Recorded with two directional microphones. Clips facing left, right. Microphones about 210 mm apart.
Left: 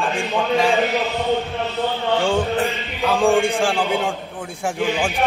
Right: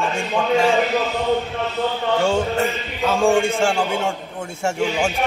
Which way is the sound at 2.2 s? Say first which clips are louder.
Right 1 dB; centre (ahead or behind).